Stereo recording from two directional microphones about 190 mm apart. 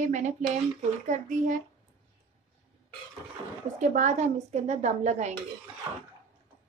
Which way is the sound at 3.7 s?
40° right (ahead or behind).